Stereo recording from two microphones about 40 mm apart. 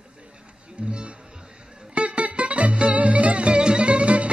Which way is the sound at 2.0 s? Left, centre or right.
Right.